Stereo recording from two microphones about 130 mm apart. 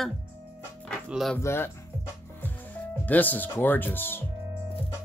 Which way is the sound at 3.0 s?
15° left (ahead or behind).